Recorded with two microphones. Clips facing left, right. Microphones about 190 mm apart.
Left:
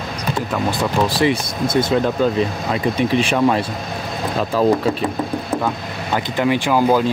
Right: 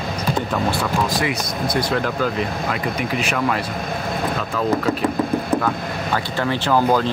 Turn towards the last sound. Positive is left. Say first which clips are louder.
# left 2 dB
turn(degrees=10)  # may be behind; listen again after turning